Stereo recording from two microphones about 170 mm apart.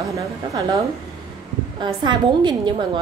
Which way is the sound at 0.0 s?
20° right (ahead or behind).